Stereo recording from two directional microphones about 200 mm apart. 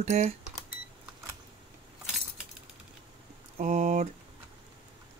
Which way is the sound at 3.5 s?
35° right (ahead or behind).